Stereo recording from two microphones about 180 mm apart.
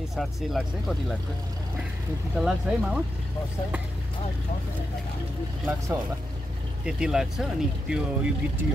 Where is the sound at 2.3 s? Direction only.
5° right (ahead or behind).